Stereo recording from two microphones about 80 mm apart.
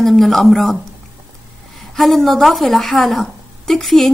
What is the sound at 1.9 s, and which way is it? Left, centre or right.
A woman's voice, centre.